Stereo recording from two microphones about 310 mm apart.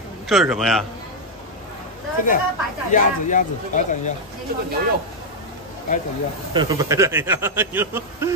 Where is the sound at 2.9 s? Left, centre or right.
Left.